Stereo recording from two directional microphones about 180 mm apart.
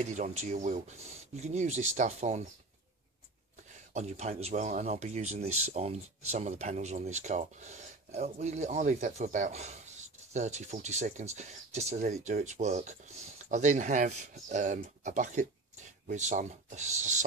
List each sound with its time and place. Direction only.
0.0 s speech: 40° right (ahead or behind)
3.9 s speech: 40° right (ahead or behind)